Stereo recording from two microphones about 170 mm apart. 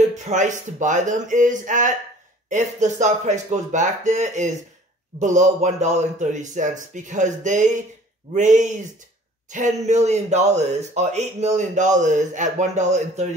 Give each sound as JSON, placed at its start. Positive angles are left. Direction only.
{"t": 0.2, "sound": "speech", "side_deg": -45}